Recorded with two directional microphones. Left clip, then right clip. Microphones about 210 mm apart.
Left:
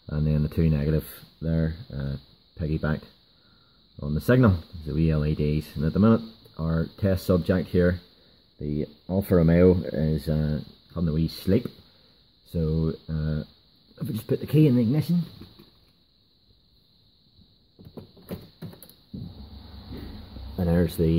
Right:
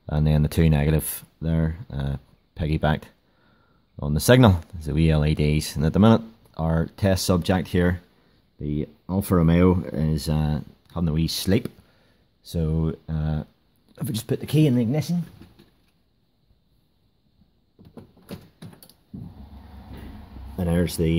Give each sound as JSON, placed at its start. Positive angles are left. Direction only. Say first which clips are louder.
{"t": 0.1, "sound": "speech", "louder": "right 4 dB", "side_deg": -50}
{"t": 4.0, "sound": "speech", "louder": "right 5 dB", "side_deg": -45}
{"t": 14.4, "sound": "speech", "louder": "even", "side_deg": -20}
{"t": 20.5, "sound": "speech", "louder": "even", "side_deg": -20}